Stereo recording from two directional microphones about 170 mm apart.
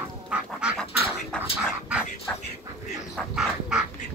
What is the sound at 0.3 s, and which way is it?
Goose, 5° right (ahead or behind).